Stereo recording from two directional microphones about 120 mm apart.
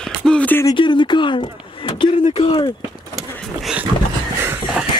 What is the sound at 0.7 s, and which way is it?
Speech, 45° left (ahead or behind).